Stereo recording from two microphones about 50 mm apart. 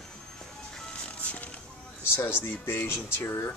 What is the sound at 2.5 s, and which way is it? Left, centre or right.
Speech, left.